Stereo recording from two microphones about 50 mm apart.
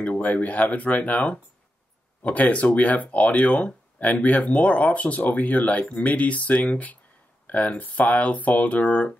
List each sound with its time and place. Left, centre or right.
0.0 s speech: left